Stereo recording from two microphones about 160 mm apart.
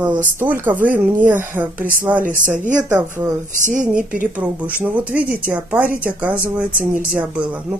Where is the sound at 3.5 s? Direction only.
55° right (ahead or behind).